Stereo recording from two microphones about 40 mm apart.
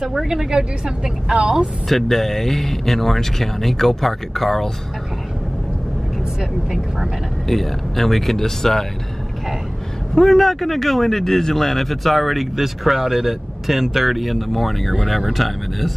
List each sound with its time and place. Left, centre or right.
0.0 s a woman's voice: centre
0.5 s a woman's voice: centre
1.9 s speech: centre
7.4 s speech: centre
10.1 s speech: centre